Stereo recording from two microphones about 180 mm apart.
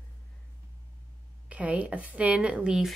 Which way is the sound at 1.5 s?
5° right (ahead or behind).